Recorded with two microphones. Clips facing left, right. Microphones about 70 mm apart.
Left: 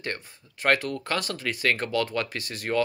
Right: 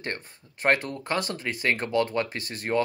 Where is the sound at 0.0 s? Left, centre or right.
Right.